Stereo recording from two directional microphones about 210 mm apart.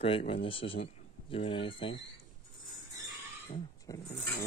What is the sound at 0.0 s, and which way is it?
Speech, 25° left (ahead or behind).